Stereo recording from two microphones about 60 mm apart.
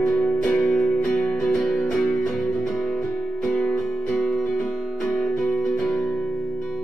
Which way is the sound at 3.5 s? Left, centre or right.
Centre.